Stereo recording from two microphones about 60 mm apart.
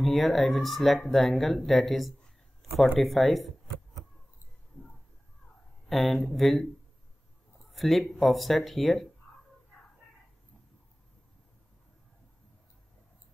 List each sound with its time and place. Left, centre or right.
0.0 s speech: centre
1.7 s a sound: centre
3.0 s speech: centre
5.9 s speech: centre
7.7 s speech: centre